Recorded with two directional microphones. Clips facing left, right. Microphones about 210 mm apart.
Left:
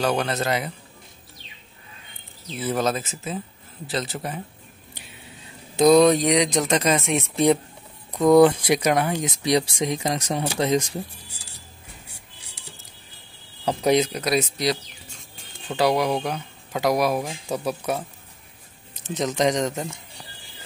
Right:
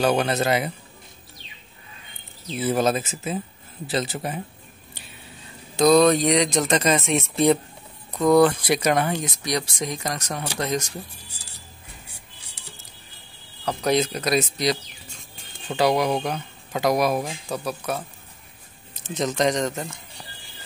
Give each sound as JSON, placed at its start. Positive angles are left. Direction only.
{"t": 0.0, "sound": "speech", "side_deg": -10}
{"t": 2.6, "sound": "speech", "side_deg": -10}
{"t": 5.8, "sound": "speech", "side_deg": 20}
{"t": 6.6, "sound": "speech", "side_deg": 0}
{"t": 9.2, "sound": "speech", "side_deg": 25}
{"t": 13.7, "sound": "speech", "side_deg": 15}
{"t": 17.6, "sound": "speech", "side_deg": 15}
{"t": 19.0, "sound": "speech", "side_deg": 15}